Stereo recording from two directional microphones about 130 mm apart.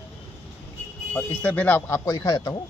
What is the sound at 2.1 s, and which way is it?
Speech, 25° left (ahead or behind).